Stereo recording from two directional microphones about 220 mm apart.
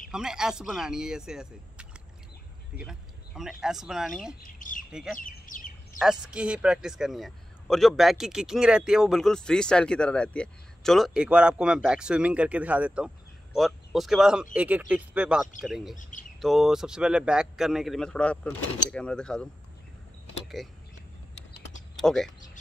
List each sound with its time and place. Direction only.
0.1 s speech: 5° right (ahead or behind)
4.4 s speech: 35° left (ahead or behind)
5.9 s speech: 5° right (ahead or behind)
16.0 s speech: 35° left (ahead or behind)
16.3 s speech: centre (ahead or behind)
20.6 s speech: centre (ahead or behind)
22.0 s speech: centre (ahead or behind)